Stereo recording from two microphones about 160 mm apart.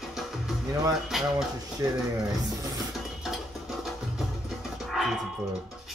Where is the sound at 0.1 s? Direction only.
Centre (ahead or behind).